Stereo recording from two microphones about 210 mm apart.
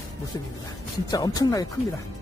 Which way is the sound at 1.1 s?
20° left (ahead or behind).